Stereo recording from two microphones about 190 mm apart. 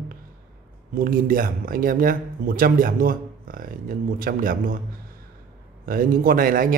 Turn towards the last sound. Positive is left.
turn(degrees=-45)  # may be behind; listen again after turning